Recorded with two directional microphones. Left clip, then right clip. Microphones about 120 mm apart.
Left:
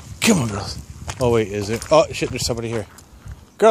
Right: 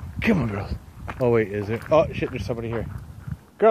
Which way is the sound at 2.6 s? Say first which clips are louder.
Left 4 dB; 60° left (ahead or behind).